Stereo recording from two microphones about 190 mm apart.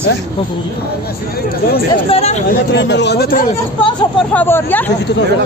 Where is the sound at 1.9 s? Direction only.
35° left (ahead or behind).